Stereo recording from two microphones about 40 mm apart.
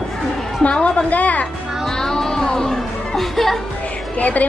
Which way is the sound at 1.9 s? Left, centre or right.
Centre.